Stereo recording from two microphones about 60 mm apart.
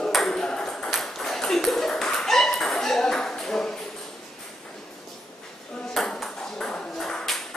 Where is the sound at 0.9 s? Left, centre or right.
Centre.